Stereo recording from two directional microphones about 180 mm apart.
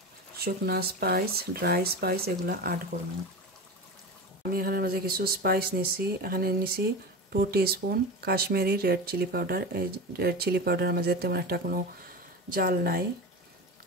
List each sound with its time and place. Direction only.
0.4 s speech: 60° right (ahead or behind)
4.4 s speech: 55° right (ahead or behind)